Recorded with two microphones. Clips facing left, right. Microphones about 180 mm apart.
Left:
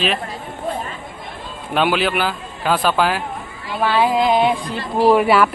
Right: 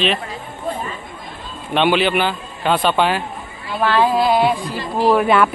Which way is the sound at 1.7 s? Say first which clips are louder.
Right 2 dB; centre (ahead or behind).